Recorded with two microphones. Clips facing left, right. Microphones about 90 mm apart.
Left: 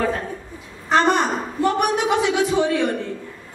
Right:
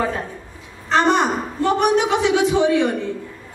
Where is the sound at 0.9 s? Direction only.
20° right (ahead or behind).